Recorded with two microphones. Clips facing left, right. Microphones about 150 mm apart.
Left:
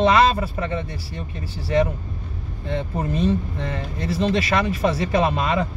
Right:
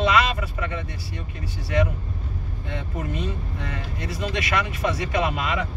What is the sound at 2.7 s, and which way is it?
Speech, 30° left (ahead or behind).